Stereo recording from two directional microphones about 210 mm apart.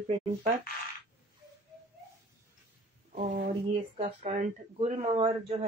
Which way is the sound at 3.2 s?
35° right (ahead or behind).